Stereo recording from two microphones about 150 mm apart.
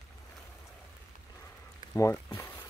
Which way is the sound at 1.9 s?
15° left (ahead or behind).